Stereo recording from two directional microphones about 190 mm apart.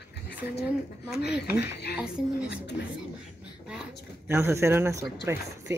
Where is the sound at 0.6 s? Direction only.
60° left (ahead or behind).